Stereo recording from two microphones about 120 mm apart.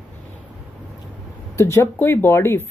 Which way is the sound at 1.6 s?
20° left (ahead or behind).